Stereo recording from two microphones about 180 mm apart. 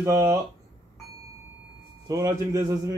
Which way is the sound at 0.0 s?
15° right (ahead or behind).